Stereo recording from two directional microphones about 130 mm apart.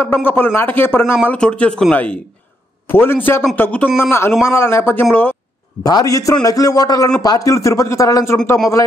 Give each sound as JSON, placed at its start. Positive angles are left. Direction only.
{"t": 0.0, "sound": "speech", "side_deg": 15}
{"t": 5.9, "sound": "speech", "side_deg": 30}